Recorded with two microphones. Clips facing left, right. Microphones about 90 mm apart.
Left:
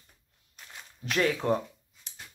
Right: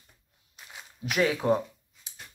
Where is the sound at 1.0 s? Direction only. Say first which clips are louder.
Right 2 dB; 5° right (ahead or behind).